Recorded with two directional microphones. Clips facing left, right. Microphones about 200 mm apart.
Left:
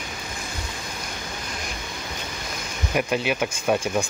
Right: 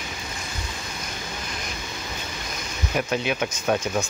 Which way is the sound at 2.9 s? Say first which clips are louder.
Left 1 dB; 5° left (ahead or behind).